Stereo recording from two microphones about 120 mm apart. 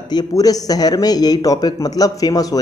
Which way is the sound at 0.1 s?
35° left (ahead or behind).